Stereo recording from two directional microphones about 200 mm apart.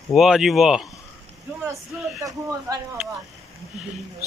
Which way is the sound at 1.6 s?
15° right (ahead or behind).